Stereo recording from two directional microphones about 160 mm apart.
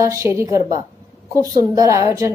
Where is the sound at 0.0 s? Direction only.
20° right (ahead or behind).